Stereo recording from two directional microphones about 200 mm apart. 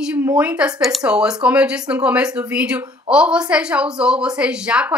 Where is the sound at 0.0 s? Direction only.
5° right (ahead or behind).